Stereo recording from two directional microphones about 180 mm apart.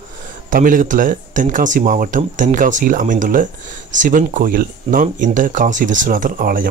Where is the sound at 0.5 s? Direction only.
50° right (ahead or behind).